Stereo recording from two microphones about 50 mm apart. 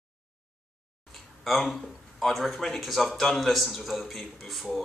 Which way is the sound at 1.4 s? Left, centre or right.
Centre.